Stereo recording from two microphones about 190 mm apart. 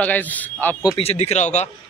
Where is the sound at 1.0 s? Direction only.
35° left (ahead or behind).